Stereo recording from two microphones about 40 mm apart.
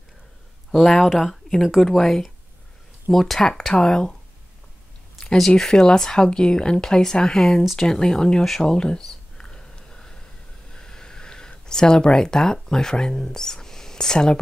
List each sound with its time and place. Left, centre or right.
0.7 s speech: centre
5.6 s speech: centre
9.4 s a sound: left
12.5 s speech: centre